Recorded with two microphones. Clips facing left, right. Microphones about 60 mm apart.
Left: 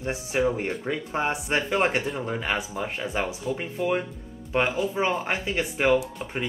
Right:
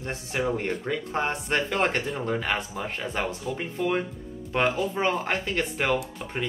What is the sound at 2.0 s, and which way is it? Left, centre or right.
Speech, centre.